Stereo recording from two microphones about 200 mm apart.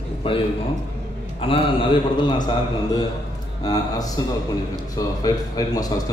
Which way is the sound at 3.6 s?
20° left (ahead or behind).